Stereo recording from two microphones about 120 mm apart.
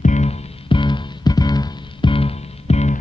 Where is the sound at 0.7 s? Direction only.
40° left (ahead or behind); by 2.9 s 65° left (ahead or behind).